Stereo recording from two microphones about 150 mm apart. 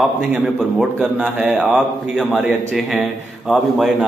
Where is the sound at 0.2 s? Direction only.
5° right (ahead or behind).